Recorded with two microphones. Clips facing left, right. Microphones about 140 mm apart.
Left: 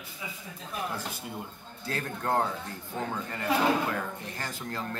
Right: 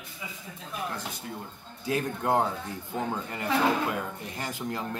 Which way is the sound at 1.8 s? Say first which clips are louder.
Right 4 dB; 15° right (ahead or behind).